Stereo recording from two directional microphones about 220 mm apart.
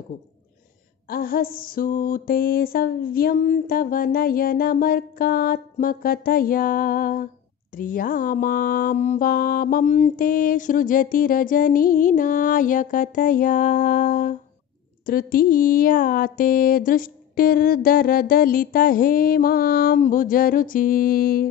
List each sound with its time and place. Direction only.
1.0 s mantra: 40° left (ahead or behind)